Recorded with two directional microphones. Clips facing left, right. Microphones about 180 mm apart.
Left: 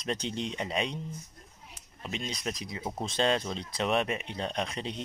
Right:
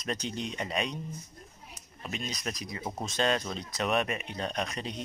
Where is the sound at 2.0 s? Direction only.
25° left (ahead or behind).